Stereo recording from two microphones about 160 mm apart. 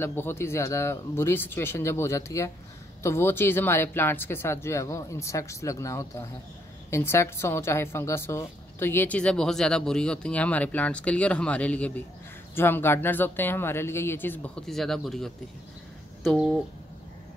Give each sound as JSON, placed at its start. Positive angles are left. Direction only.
{"t": 0.0, "sound": "a woman's voice", "side_deg": 15}